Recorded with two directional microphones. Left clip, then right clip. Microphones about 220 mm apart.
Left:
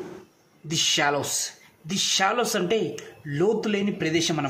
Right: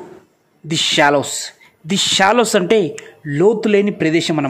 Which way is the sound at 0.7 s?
40° right (ahead or behind).